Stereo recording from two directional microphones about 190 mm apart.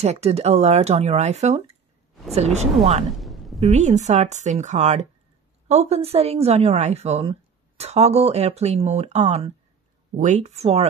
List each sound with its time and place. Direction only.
0.0 s a woman's voice: 35° right (ahead or behind)
3.1 s a sound: centre (ahead or behind)
3.7 s a woman's voice: 40° right (ahead or behind)